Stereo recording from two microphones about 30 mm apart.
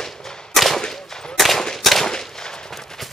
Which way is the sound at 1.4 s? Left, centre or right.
Centre.